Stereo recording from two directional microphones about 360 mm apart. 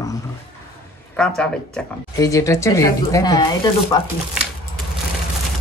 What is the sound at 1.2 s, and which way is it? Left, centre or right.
Speech, centre.